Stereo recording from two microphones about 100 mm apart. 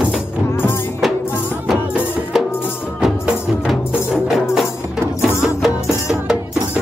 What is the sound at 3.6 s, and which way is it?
Music, 5° right (ahead or behind).